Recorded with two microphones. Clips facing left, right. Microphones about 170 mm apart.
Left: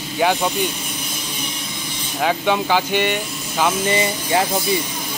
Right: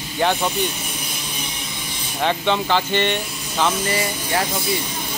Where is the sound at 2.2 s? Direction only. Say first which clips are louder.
Left 1 dB; 10° left (ahead or behind).